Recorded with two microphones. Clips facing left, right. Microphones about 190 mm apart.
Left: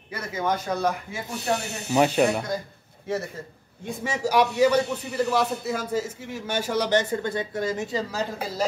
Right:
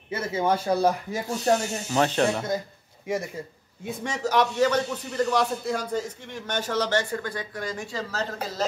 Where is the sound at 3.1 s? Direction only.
10° right (ahead or behind).